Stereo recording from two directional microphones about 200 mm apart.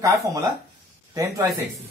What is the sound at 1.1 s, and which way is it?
Speech, 20° right (ahead or behind).